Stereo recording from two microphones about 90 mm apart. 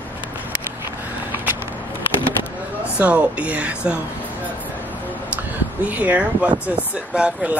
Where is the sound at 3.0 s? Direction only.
15° right (ahead or behind).